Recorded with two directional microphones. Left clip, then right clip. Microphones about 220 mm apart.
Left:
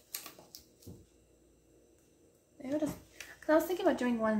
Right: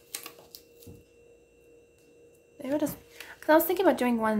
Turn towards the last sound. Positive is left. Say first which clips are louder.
# right 6 dB
turn(degrees=-40)  # may be behind; listen again after turning